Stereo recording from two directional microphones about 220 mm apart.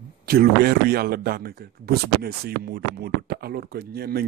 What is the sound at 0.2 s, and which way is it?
A man's voice, 45° right (ahead or behind).